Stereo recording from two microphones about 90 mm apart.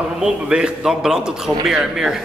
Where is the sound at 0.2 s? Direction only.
10° right (ahead or behind).